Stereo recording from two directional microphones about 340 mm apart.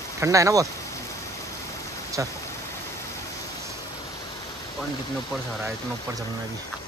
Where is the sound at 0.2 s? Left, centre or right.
Centre.